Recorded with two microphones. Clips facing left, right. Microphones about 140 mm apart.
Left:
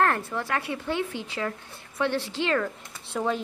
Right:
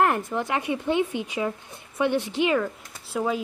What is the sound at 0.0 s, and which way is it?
Speech, 15° right (ahead or behind).